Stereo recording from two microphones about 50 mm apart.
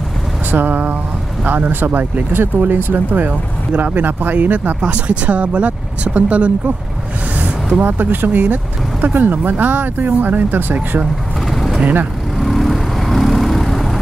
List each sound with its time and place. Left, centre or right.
0.5 s speech: right
4.8 s speech: right
7.8 s speech: right
11.5 s vehicle: centre
11.8 s speech: right
12.4 s vehicle: centre